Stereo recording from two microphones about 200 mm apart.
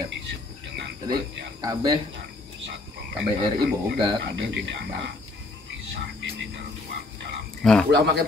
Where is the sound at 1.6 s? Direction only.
20° right (ahead or behind).